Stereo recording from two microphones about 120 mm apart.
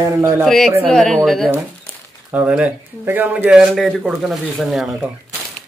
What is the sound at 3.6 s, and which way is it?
Speech, centre (ahead or behind).